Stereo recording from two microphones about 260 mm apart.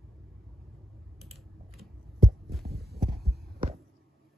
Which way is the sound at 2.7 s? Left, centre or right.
Right.